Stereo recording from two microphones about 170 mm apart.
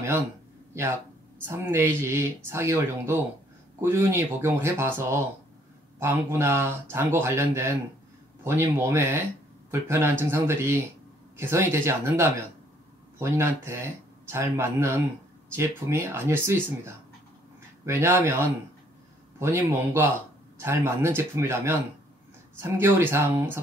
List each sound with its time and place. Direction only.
1.4 s speech: 15° right (ahead or behind)